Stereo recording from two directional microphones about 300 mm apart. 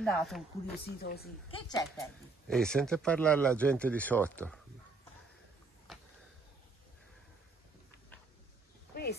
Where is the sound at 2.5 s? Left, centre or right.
Centre.